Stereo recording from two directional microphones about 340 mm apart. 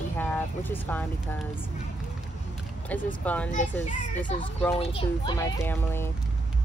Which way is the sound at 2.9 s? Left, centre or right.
Centre.